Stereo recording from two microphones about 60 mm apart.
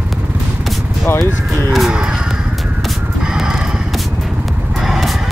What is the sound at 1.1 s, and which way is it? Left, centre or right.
Vehicle, left.